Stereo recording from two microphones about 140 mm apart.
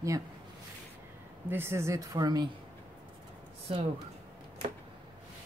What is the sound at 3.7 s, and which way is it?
Speech, 45° right (ahead or behind).